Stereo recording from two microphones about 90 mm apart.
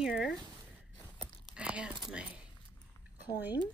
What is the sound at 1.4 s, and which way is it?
Speech, 10° right (ahead or behind).